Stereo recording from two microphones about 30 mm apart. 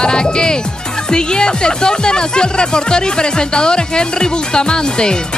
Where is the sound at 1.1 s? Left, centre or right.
Left.